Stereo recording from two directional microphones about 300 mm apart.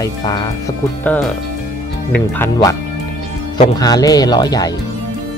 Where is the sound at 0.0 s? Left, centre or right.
Centre.